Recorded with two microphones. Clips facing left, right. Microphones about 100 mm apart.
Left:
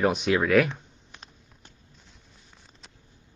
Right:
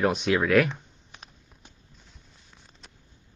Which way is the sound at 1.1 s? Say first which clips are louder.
Even; 10° right (ahead or behind).